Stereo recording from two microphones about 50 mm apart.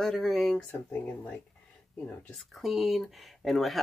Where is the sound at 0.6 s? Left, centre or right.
Left.